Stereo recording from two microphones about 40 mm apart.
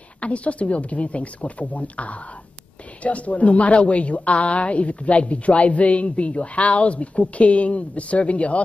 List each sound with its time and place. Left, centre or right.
0.2 s a woman's voice: left